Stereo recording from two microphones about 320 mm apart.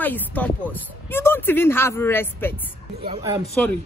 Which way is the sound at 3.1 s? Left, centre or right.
Centre.